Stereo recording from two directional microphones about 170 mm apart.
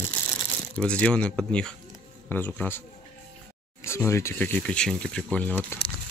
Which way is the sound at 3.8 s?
15° left (ahead or behind).